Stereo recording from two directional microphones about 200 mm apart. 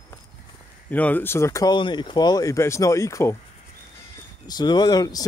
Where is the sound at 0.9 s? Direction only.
10° left (ahead or behind).